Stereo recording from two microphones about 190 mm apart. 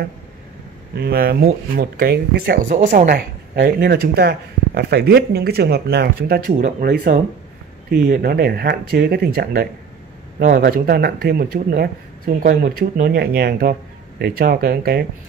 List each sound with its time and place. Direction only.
0.9 s a man's voice: 55° right (ahead or behind)